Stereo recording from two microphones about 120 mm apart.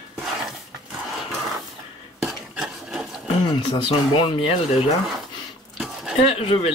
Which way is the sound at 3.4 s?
45° left (ahead or behind).